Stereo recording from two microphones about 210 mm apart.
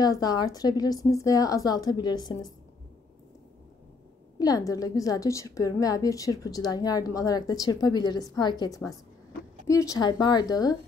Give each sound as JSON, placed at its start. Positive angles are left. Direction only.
{"t": 0.0, "sound": "a woman's voice", "side_deg": 20}
{"t": 4.4, "sound": "a woman's voice", "side_deg": 15}